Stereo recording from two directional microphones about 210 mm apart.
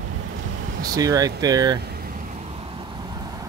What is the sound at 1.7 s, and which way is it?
Vehicle, 50° right (ahead or behind).